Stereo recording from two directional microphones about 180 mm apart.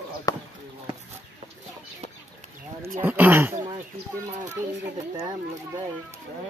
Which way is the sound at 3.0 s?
10° right (ahead or behind).